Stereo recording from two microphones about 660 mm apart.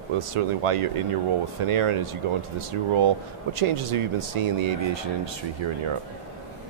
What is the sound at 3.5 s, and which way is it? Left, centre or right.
Speech, right.